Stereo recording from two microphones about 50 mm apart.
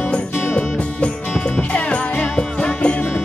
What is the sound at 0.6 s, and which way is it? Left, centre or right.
Music, left.